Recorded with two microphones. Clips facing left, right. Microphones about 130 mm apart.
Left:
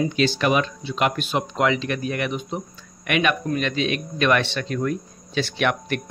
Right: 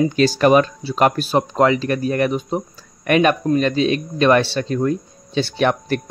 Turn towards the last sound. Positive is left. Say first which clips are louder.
# right 5 dB
turn(degrees=-35)  # may be behind; listen again after turning